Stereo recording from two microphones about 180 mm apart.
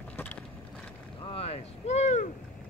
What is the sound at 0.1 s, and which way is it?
Vehicle, 10° left (ahead or behind).